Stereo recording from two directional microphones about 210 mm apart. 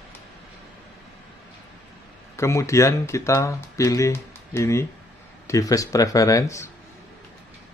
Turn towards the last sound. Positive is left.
turn(degrees=15)  # may be behind; listen again after turning